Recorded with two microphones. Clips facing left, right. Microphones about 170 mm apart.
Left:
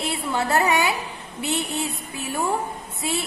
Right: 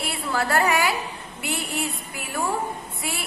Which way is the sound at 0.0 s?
20° left (ahead or behind).